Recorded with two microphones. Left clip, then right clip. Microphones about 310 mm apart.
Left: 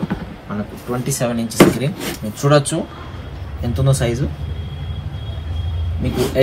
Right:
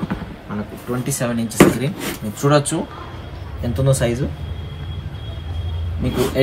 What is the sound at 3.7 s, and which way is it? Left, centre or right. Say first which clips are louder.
Speech: right 1 dB; centre.